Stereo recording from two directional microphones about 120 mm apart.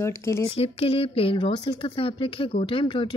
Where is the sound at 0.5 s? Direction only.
55° left (ahead or behind).